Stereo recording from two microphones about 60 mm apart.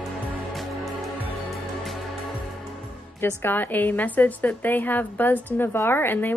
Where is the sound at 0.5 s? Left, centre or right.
Centre.